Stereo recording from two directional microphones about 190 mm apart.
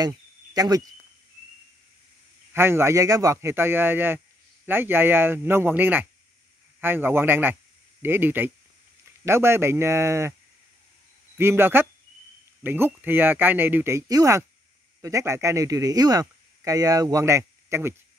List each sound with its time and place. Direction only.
0.0 s cricket: 20° right (ahead or behind)
2.5 s speech: 15° right (ahead or behind)
11.3 s speech: 10° right (ahead or behind)